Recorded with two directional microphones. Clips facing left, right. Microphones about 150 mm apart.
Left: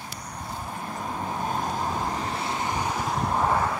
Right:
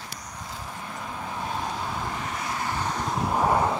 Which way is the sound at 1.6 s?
40° left (ahead or behind).